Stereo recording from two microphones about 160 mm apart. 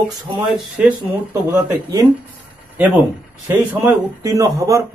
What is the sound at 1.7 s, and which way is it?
Speech, 20° right (ahead or behind).